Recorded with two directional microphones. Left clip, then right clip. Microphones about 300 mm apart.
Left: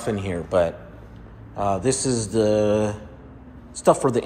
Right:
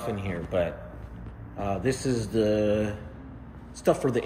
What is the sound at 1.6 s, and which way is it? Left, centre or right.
Mantra, centre.